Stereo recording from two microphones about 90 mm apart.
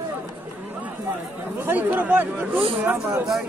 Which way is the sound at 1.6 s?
20° right (ahead or behind).